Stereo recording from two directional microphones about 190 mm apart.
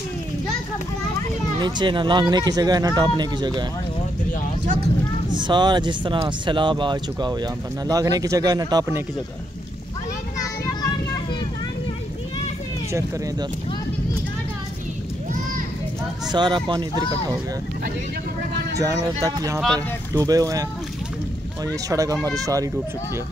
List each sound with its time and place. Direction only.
1.6 s speech: 25° right (ahead or behind)
5.4 s speech: 25° right (ahead or behind)
10.4 s children playing: 20° left (ahead or behind)
16.3 s speech: 25° right (ahead or behind)
18.8 s speech: 15° right (ahead or behind)
21.8 s speech: 15° right (ahead or behind)